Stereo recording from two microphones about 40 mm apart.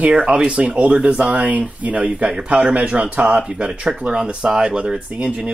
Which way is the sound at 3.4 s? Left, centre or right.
Centre.